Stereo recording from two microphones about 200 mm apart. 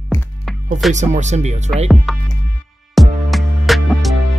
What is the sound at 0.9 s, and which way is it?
Speech, 35° right (ahead or behind).